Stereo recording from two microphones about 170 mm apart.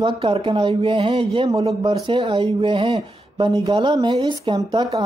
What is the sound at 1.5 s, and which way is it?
Speech, 20° right (ahead or behind).